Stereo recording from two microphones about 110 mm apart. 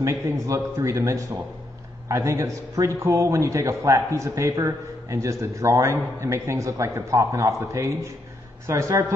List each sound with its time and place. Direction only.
0.0 s a man's voice: 25° right (ahead or behind)